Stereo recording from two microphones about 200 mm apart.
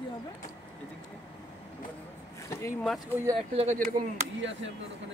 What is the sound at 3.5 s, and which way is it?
Speech, 35° right (ahead or behind).